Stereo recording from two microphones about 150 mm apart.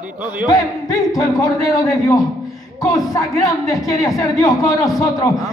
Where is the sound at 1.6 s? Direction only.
25° left (ahead or behind).